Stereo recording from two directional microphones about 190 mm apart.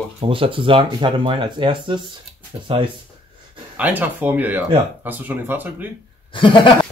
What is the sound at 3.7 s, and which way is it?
Speech, 10° right (ahead or behind).